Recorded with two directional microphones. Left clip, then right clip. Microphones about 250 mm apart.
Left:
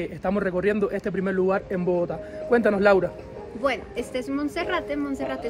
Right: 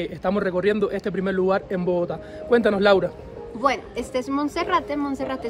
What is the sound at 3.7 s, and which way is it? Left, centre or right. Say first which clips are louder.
Speech: right 2 dB; centre.